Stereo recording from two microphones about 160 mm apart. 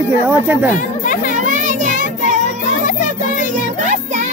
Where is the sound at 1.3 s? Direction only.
50° right (ahead or behind).